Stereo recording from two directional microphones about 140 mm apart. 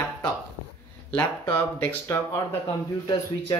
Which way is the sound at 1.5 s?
15° left (ahead or behind).